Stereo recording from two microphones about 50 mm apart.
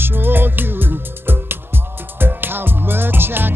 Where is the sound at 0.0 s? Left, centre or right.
Right.